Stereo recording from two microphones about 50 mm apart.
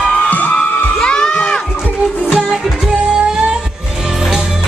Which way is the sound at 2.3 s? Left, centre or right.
Centre.